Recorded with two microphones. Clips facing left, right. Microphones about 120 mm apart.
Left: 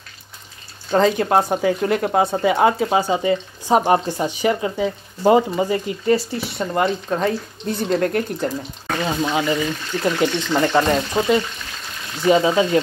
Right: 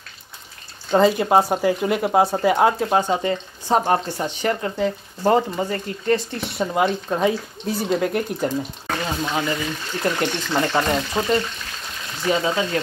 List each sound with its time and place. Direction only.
0.9 s speech: 5° right (ahead or behind)
9.0 s speech: 10° left (ahead or behind)
12.3 s speech: 20° left (ahead or behind)